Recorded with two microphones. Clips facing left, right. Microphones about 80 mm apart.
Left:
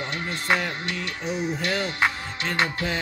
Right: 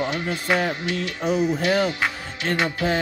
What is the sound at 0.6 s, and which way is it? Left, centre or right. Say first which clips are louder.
Speech: right 5 dB; right.